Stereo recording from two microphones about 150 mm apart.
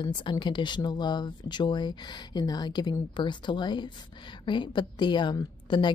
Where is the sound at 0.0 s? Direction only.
30° left (ahead or behind).